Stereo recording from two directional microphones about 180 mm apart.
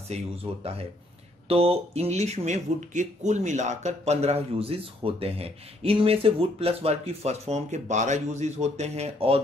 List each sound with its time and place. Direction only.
0.1 s speech: 35° right (ahead or behind)